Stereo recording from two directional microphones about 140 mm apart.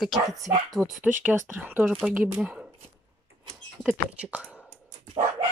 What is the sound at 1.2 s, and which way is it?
Speech, 10° right (ahead or behind).